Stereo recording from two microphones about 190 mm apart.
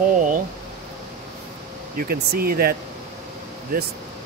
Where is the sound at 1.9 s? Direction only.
50° right (ahead or behind).